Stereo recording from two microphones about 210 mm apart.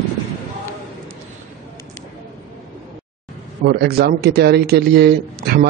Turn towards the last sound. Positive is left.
turn(degrees=-50)  # may be behind; listen again after turning